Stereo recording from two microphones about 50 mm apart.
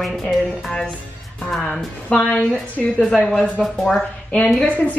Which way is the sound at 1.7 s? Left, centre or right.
Left.